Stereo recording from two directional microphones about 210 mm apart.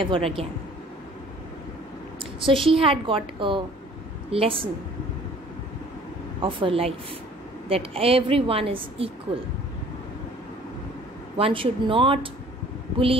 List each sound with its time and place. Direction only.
0.0 s a woman's voice: 25° right (ahead or behind)
2.1 s a woman's voice: 25° right (ahead or behind)
6.4 s a woman's voice: 25° right (ahead or behind)
11.3 s a woman's voice: 25° right (ahead or behind)